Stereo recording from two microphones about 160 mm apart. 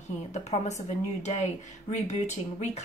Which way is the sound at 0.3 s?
45° left (ahead or behind).